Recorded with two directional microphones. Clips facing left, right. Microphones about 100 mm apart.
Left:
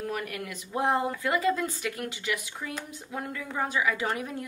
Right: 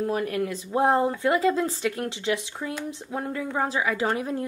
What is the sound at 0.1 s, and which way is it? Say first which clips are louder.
A woman's voice: right 8 dB; 30° right (ahead or behind).